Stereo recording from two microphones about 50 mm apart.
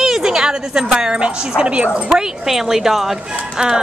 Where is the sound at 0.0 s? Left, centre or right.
Centre.